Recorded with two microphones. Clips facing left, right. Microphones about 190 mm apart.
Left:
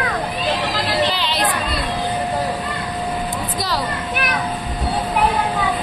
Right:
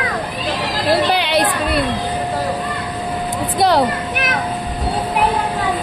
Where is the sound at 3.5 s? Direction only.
60° right (ahead or behind).